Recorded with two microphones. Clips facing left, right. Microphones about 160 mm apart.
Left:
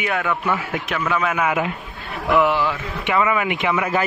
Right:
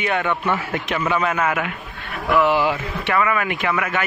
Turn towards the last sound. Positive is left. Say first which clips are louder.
# left 1 dB
turn(degrees=20)  # may be behind; listen again after turning